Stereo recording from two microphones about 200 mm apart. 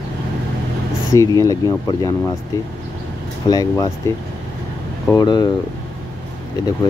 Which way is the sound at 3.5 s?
20° left (ahead or behind).